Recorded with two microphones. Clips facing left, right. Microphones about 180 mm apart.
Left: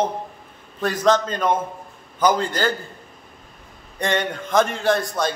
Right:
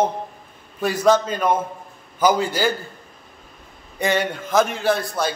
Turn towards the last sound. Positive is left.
turn(degrees=-5)  # may be behind; listen again after turning